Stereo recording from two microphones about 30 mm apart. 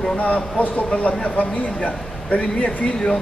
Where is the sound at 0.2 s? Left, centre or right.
Left.